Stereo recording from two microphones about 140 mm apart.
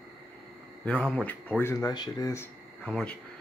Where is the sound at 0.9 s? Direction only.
10° left (ahead or behind); by 2.4 s 25° left (ahead or behind).